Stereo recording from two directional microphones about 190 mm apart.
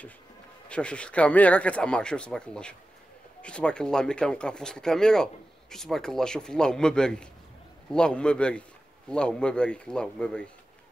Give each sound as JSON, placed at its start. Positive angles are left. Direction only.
{"t": 0.7, "sound": "speech", "side_deg": 5}